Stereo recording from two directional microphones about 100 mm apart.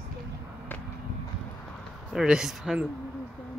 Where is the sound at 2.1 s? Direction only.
5° right (ahead or behind).